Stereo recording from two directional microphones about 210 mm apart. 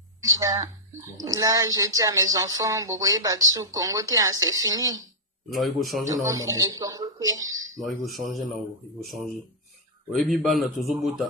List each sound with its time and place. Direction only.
0.2 s a sound: 15° right (ahead or behind)
1.1 s speech: 15° right (ahead or behind)
5.5 s a man's voice: centre (ahead or behind)
6.0 s speech: 15° right (ahead or behind)
7.8 s a man's voice: centre (ahead or behind)
10.1 s a man's voice: centre (ahead or behind)